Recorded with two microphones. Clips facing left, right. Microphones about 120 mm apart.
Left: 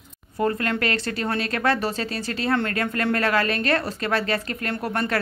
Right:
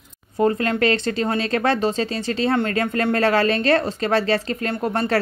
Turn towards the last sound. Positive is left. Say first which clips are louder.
# right 4 dB
turn(degrees=-30)  # may be behind; listen again after turning